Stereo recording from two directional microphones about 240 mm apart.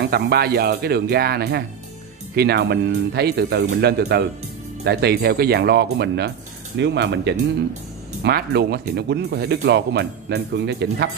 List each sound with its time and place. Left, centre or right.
0.1 s speech: right